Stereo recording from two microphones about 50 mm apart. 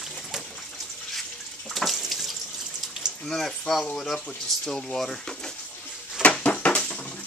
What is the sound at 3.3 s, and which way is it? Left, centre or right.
Speech, centre.